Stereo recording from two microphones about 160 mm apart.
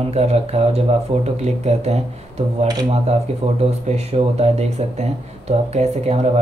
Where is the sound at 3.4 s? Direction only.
40° right (ahead or behind).